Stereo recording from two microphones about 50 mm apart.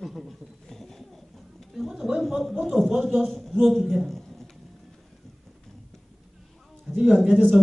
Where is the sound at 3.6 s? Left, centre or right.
Centre.